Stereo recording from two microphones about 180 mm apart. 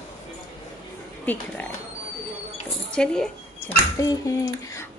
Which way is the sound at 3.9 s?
20° left (ahead or behind).